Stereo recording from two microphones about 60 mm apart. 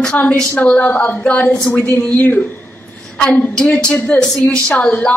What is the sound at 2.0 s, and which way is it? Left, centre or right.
A woman's voice, left.